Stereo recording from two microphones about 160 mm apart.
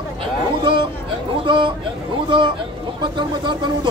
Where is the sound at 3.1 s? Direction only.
30° right (ahead or behind).